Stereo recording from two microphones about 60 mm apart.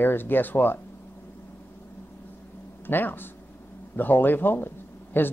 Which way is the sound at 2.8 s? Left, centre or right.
Left.